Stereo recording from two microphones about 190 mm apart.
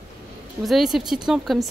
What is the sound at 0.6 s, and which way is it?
A woman's voice, centre (ahead or behind).